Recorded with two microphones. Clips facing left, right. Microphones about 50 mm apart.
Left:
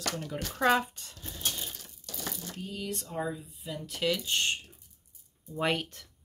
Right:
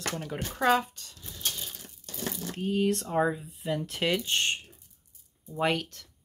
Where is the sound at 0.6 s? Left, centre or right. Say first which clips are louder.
Right 1 dB; centre.